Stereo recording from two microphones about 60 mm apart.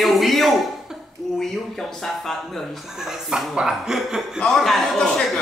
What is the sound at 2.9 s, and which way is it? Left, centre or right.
Speech, centre.